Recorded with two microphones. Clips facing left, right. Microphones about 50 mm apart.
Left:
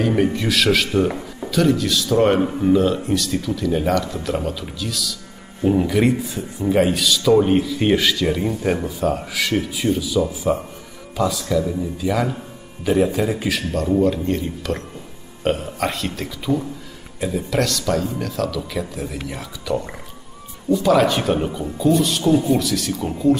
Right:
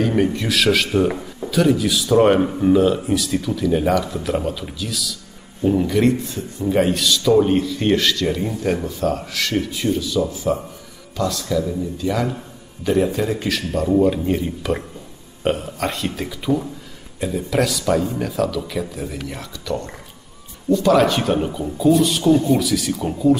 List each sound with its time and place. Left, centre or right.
0.0 s speech: centre